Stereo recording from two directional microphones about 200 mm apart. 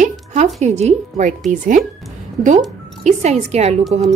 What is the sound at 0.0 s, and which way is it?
Music, 35° right (ahead or behind).